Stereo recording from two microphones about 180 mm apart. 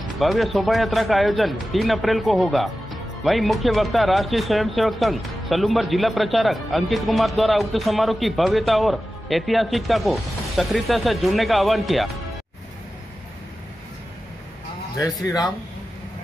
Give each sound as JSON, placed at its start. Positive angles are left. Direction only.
{"t": 0.2, "sound": "speech", "side_deg": 0}
{"t": 15.2, "sound": "speech", "side_deg": 20}